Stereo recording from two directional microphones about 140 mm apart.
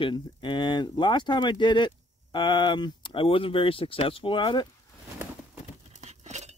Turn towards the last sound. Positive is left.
turn(degrees=-55)  # may be behind; listen again after turning